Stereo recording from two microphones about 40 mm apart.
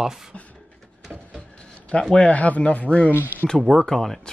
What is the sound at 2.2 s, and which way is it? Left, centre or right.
Speech, left.